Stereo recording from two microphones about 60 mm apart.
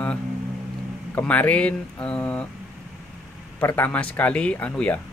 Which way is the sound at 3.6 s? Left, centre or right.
Left.